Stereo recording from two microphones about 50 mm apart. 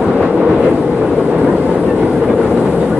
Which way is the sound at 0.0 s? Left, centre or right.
Centre.